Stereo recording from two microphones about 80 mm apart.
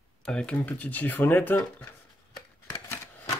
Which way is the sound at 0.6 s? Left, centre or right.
Left.